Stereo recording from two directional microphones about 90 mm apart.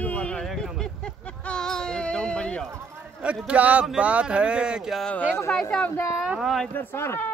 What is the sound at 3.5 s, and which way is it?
Speech, 15° right (ahead or behind).